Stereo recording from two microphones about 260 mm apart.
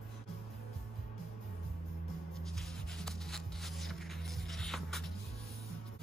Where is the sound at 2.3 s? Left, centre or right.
Centre.